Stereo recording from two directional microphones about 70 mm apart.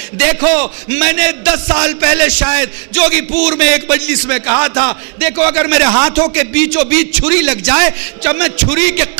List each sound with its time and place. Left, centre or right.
0.2 s a man's voice: right